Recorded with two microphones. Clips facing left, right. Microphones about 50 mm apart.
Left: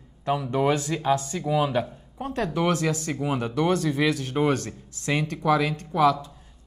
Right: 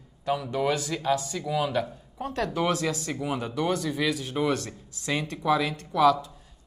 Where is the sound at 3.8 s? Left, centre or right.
Left.